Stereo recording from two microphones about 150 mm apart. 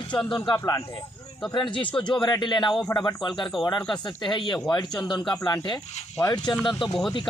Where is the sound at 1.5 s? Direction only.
30° left (ahead or behind).